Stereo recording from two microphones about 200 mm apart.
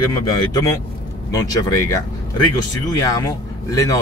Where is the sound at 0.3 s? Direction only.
20° left (ahead or behind).